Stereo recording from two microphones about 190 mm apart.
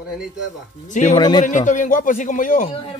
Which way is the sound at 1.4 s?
40° left (ahead or behind).